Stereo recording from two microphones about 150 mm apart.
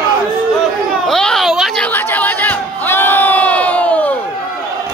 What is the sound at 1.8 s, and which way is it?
Crowd, 15° left (ahead or behind).